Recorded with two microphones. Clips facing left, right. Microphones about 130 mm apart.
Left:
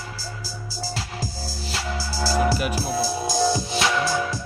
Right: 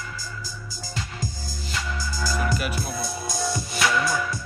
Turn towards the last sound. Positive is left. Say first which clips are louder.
# left 1 dB
turn(degrees=25)  # may be behind; listen again after turning